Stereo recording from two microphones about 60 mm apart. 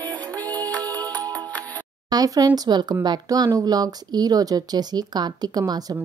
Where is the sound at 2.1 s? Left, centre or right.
Right.